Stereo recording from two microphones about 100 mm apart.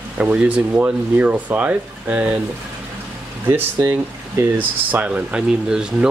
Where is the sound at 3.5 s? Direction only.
25° right (ahead or behind).